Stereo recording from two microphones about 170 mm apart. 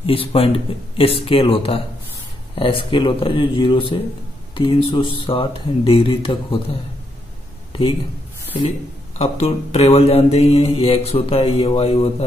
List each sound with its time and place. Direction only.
0.0 s speech: 35° left (ahead or behind)
9.2 s speech: 35° left (ahead or behind)